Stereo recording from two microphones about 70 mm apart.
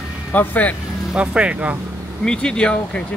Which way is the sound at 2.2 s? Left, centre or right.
Centre.